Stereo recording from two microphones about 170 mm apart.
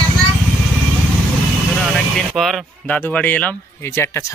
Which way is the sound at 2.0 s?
Centre (ahead or behind).